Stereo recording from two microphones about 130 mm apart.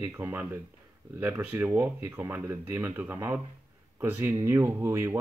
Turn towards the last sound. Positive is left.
turn(degrees=-20)  # may be behind; listen again after turning